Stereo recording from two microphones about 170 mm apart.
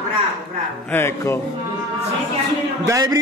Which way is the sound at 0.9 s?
15° left (ahead or behind).